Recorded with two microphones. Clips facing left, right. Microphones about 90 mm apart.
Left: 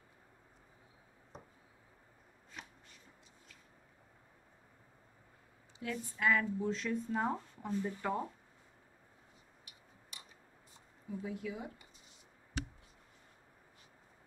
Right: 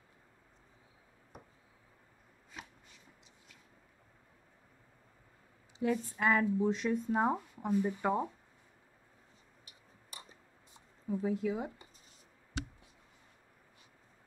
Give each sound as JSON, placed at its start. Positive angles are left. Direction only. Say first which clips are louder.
{"t": 1.3, "sound": "a sound", "louder": "left 1 dB", "side_deg": 30}
{"t": 2.6, "sound": "shuffling cards", "louder": "right 2 dB", "side_deg": -5}
{"t": 5.8, "sound": "speech", "louder": "right 4 dB", "side_deg": -20}
{"t": 11.1, "sound": "speech", "louder": "right 8 dB", "side_deg": -30}